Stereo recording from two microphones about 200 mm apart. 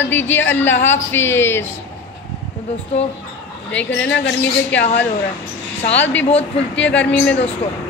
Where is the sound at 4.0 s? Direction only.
60° left (ahead or behind).